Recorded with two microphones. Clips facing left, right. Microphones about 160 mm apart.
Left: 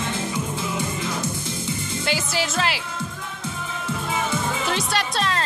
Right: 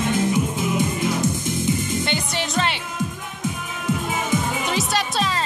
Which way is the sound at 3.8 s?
15° right (ahead or behind).